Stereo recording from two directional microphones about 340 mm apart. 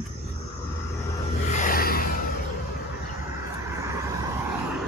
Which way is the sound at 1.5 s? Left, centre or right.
Left.